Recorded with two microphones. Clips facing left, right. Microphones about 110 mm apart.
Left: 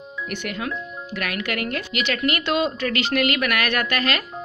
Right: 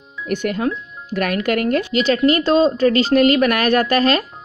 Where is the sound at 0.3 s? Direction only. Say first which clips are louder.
Right 9 dB; 40° right (ahead or behind).